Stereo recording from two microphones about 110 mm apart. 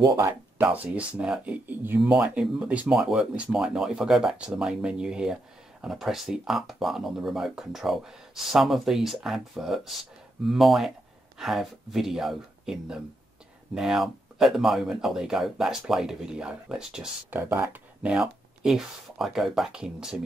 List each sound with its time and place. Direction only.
0.0 s speech: 35° right (ahead or behind)
0.3 s speech: 15° right (ahead or behind)
17.3 s speech: 20° right (ahead or behind)